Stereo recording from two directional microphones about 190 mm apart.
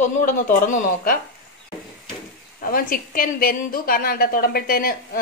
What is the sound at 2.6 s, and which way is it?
A woman's voice, 50° left (ahead or behind).